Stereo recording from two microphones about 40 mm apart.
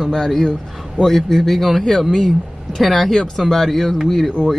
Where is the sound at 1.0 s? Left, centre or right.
Right.